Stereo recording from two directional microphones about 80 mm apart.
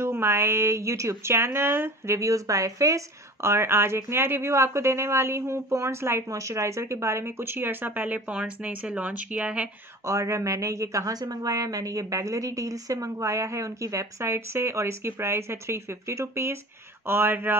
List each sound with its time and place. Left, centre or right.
0.0 s speech: right; by 9.7 s centre
10.0 s speech: right